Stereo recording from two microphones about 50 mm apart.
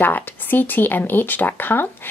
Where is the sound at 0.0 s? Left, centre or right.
Left.